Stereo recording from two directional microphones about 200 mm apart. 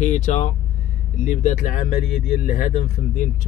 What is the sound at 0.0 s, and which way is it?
Speech, 40° left (ahead or behind).